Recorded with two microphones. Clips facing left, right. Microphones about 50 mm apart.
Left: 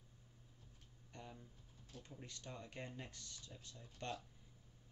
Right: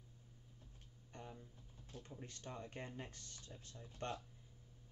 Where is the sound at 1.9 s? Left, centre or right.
Right.